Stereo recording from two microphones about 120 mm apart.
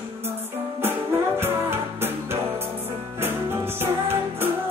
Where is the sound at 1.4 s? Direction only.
20° right (ahead or behind).